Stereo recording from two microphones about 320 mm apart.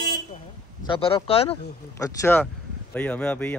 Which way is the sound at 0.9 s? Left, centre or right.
Centre.